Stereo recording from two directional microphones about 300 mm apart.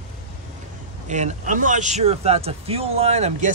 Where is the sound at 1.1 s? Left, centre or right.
Right.